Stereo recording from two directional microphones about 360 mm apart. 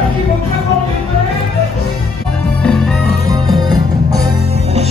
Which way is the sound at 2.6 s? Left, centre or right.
Centre.